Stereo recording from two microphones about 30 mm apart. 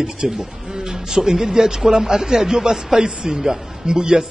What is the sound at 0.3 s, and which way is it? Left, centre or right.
A man's voice, right.